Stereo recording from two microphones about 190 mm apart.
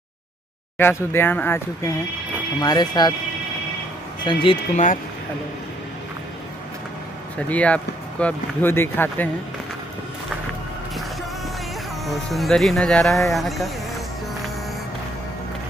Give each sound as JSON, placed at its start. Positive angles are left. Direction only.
{"t": 0.7, "sound": "speech", "side_deg": 10}
{"t": 2.6, "sound": "speech", "side_deg": 20}
{"t": 4.2, "sound": "speech", "side_deg": 25}
{"t": 7.4, "sound": "speech", "side_deg": 5}
{"t": 12.1, "sound": "speech", "side_deg": 0}